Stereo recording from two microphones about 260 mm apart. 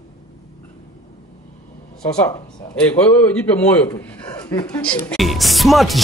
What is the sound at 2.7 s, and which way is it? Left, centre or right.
Speech, centre.